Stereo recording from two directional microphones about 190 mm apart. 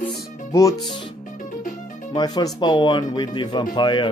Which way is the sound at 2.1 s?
20° left (ahead or behind).